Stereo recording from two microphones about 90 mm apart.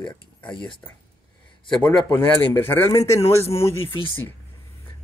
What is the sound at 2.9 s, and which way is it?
Speech, 35° left (ahead or behind).